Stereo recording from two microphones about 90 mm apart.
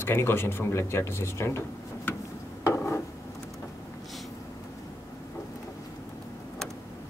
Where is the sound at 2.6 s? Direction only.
30° left (ahead or behind).